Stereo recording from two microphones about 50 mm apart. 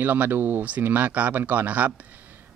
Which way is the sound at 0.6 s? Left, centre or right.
Right.